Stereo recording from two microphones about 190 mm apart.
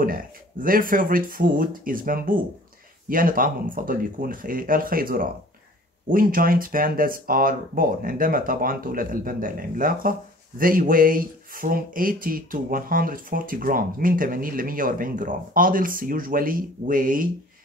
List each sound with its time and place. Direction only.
0.0 s speech: 50° right (ahead or behind)